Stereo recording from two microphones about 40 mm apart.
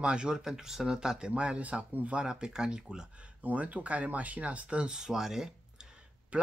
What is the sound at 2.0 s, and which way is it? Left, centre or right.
Speech, right.